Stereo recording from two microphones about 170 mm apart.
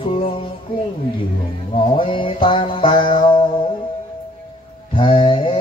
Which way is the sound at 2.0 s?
30° left (ahead or behind).